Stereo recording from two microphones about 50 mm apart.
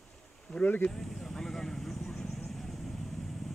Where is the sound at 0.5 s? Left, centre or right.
Left.